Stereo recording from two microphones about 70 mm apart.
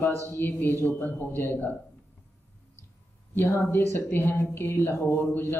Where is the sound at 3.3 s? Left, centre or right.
Left.